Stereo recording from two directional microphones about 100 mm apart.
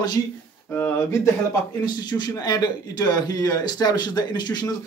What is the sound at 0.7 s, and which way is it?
Speech, 20° left (ahead or behind).